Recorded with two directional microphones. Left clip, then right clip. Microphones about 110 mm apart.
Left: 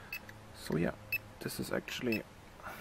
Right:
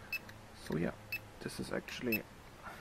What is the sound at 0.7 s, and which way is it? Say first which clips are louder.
Speech: left 4 dB; 30° left (ahead or behind).